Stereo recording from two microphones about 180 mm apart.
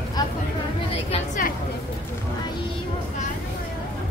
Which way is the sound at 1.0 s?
45° left (ahead or behind).